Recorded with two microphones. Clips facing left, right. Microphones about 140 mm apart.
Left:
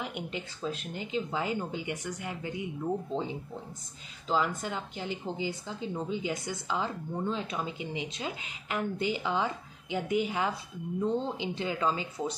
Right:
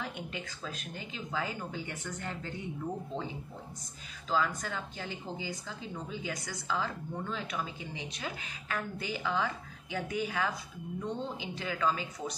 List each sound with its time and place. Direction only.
0.0 s a woman's voice: 20° left (ahead or behind)
4.3 s a woman's voice: 25° left (ahead or behind)